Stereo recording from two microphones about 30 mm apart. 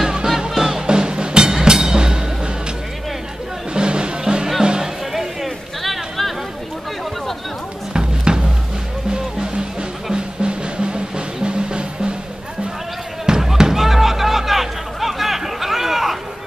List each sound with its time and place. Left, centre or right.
0.0 s music: right
0.8 s music: right
3.7 s music: right
5.1 s chatter: centre
7.9 s music: right
13.2 s basketball bounce: centre
13.7 s a sound: centre